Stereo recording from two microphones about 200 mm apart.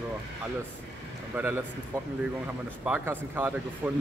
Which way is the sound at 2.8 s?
10° right (ahead or behind).